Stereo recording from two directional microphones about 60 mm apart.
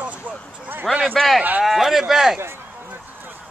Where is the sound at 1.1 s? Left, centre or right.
Centre.